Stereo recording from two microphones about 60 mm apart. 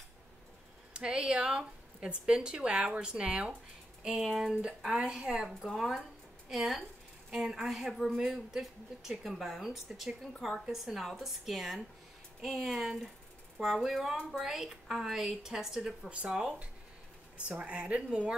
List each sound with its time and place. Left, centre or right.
0.9 s a woman's voice: centre
4.9 s speech: centre
5.5 s speech: centre
5.8 s a woman's voice: centre
8.2 s a woman's voice: centre